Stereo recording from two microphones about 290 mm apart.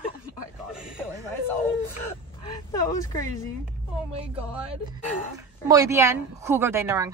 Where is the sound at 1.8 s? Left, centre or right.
Centre.